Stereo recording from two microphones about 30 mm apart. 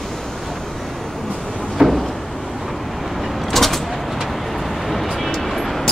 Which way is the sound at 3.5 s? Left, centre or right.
Centre.